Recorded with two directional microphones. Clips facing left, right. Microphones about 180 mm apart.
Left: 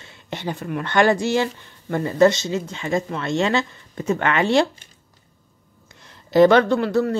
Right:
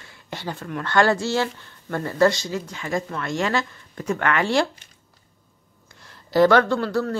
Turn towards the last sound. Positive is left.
turn(degrees=20)  # may be behind; listen again after turning